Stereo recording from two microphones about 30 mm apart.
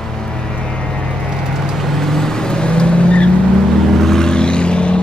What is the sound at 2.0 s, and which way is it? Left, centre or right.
Vehicle, centre.